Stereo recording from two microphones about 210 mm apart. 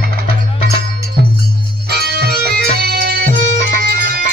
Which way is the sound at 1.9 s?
50° right (ahead or behind).